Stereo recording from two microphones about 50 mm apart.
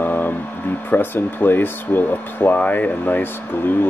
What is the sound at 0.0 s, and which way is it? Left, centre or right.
Speech, left.